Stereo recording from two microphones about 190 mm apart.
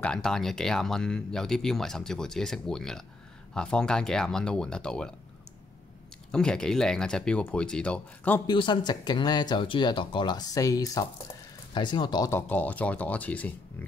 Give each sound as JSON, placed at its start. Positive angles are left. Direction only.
{"t": 0.0, "sound": "speech", "side_deg": 5}
{"t": 6.3, "sound": "speech", "side_deg": 5}
{"t": 8.5, "sound": "speech", "side_deg": 25}